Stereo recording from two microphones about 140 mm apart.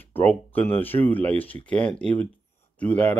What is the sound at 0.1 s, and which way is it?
Speech, 10° left (ahead or behind).